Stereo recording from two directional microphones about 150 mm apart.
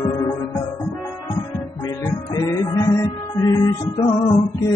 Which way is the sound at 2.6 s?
25° left (ahead or behind).